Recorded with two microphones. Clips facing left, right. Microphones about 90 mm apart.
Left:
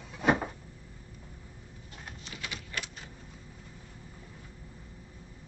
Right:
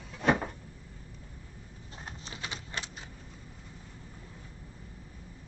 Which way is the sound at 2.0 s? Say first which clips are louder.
Right 1 dB; 30° right (ahead or behind).